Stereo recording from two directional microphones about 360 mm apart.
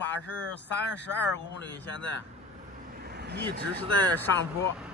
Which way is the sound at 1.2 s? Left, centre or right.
Left.